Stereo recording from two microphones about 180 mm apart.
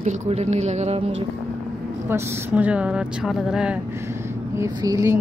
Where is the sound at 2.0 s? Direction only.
10° right (ahead or behind).